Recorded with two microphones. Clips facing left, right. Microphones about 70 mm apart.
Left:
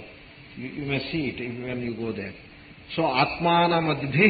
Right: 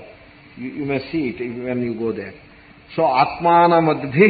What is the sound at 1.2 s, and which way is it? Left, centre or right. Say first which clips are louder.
Speech: right 7 dB; right.